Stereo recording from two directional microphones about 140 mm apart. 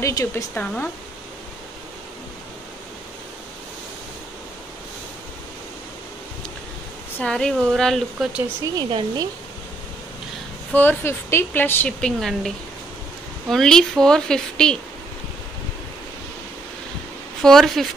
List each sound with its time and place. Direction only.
0.0 s speech: 20° left (ahead or behind)
7.2 s speech: 5° left (ahead or behind)
8.7 s speech: 30° right (ahead or behind)
10.7 s speech: 15° left (ahead or behind)
12.2 s speech: centre (ahead or behind)
17.4 s speech: centre (ahead or behind)